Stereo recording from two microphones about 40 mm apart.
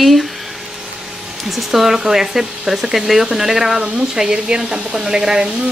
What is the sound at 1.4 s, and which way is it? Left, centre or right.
Speech, centre.